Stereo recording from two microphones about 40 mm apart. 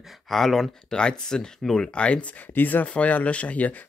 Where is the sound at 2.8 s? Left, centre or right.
Left.